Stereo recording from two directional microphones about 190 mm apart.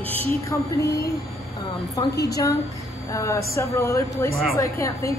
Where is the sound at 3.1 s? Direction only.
15° left (ahead or behind).